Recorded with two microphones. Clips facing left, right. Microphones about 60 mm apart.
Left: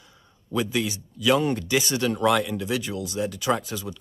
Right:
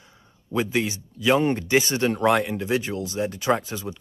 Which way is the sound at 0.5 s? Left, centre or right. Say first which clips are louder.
Right 2 dB; right.